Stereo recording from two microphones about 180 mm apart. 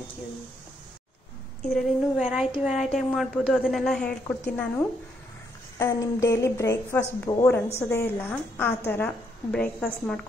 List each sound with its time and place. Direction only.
1.7 s a woman's voice: centre (ahead or behind)